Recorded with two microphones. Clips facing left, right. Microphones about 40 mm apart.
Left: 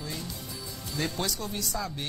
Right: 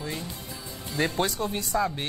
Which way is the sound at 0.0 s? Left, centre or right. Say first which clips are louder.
Right 4 dB; right.